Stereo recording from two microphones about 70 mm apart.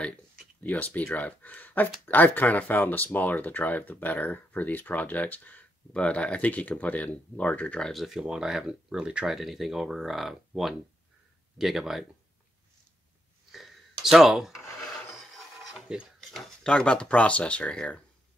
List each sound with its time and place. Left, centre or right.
0.7 s speech: left
7.8 s speech: centre
13.5 s a sound: centre
15.9 s speech: centre
16.3 s speech: centre